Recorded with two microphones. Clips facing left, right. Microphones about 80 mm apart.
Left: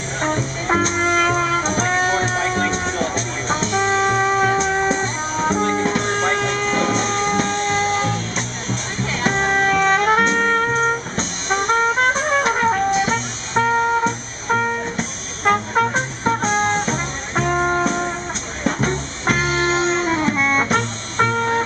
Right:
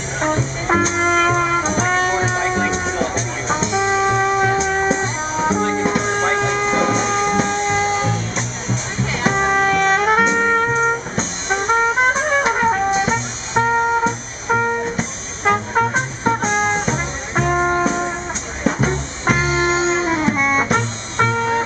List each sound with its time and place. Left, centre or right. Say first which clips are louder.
0.2 s music: right 2 dB; centre